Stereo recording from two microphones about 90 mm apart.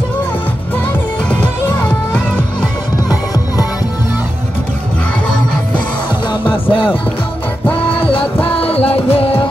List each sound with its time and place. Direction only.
1.3 s music: 15° left (ahead or behind)
6.2 s music: 60° left (ahead or behind)
7.9 s music: 80° left